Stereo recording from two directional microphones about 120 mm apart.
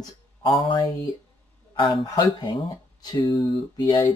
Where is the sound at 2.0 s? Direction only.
30° left (ahead or behind).